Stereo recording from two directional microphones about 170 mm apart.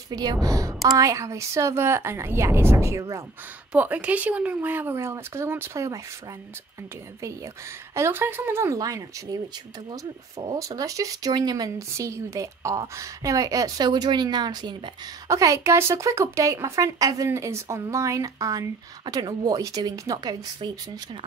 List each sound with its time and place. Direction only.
0.1 s a woman's voice: 25° right (ahead or behind)
7.9 s a woman's voice: 15° right (ahead or behind)
10.4 s speech: 20° right (ahead or behind)